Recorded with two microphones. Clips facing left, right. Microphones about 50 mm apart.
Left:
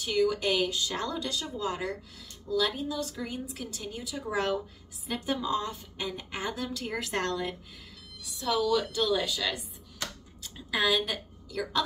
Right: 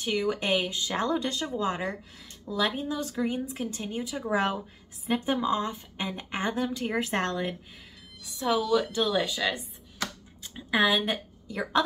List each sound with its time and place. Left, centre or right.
0.0 s a woman's voice: right